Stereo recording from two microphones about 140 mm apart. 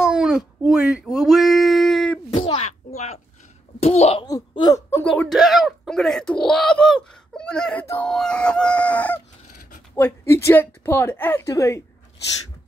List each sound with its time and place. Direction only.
0.0 s a sound: 5° right (ahead or behind)
0.7 s speech: 5° right (ahead or behind)
2.4 s a sound: 45° left (ahead or behind)
3.8 s a child's voice: 50° left (ahead or behind)
4.2 s a child's voice: 30° left (ahead or behind)
5.0 s speech: 5° left (ahead or behind)
8.1 s chicken: 5° left (ahead or behind)
9.9 s a woman's voice: 15° left (ahead or behind)